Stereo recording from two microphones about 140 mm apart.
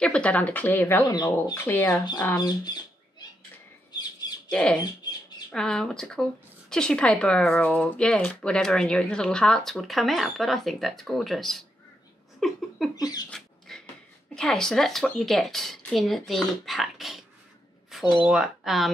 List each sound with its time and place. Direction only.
0.0 s speech: 10° left (ahead or behind)
1.0 s cat: 30° left (ahead or behind)
1.5 s speech: 15° left (ahead or behind)
2.3 s a sound: 30° left (ahead or behind)
4.5 s speech: 5° left (ahead or behind)
12.9 s cat: 30° left (ahead or behind)
13.3 s beatboxing: 5° left (ahead or behind)
14.3 s speech: 5° left (ahead or behind)
18.2 s speech: 5° right (ahead or behind)